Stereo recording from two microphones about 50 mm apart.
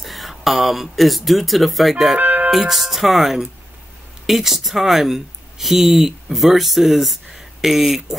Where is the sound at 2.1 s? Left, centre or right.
Right.